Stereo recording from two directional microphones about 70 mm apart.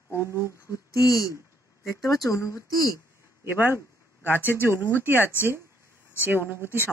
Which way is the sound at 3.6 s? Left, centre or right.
Right.